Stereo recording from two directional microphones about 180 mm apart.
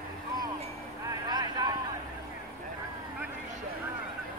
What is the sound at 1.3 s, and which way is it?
Vehicle, 20° right (ahead or behind).